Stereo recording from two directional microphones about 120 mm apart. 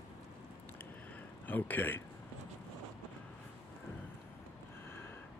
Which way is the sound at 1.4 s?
15° left (ahead or behind).